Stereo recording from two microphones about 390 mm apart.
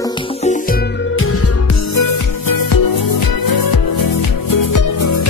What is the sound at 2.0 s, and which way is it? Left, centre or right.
Music, left.